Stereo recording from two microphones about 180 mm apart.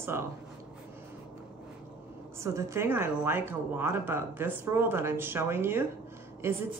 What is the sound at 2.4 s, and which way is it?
A woman's voice, 15° right (ahead or behind).